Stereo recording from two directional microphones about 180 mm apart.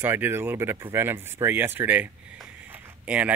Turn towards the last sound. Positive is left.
turn(degrees=-10)  # may be behind; listen again after turning